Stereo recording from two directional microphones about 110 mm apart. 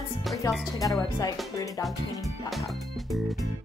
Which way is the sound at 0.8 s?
35° left (ahead or behind).